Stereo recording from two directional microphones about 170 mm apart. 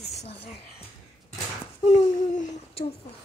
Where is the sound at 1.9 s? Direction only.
40° left (ahead or behind).